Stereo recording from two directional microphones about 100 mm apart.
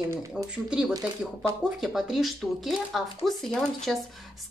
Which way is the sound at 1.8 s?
5° right (ahead or behind).